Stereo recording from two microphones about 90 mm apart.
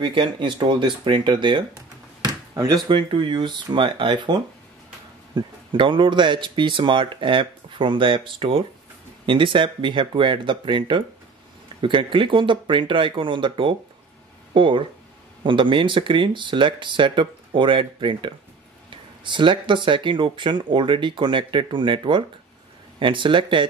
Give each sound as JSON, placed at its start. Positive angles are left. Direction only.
{"t": 0.0, "sound": "speech", "side_deg": -60}
{"t": 2.2, "sound": "a sound", "side_deg": -40}
{"t": 2.9, "sound": "speech", "side_deg": -65}
{"t": 9.2, "sound": "speech", "side_deg": -70}